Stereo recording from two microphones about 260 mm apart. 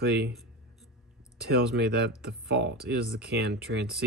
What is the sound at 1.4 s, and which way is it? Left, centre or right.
Speech, right.